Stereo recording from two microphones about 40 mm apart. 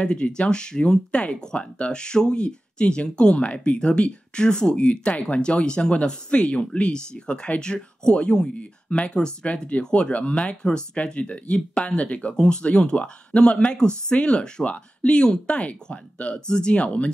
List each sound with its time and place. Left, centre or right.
0.0 s speech: left
16.3 s speech: centre
16.7 s speech: left